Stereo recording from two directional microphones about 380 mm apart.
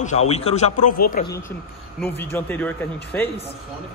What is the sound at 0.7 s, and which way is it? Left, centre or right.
Speech, left.